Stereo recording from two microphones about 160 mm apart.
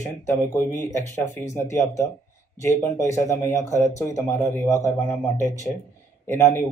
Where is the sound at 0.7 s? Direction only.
15° left (ahead or behind).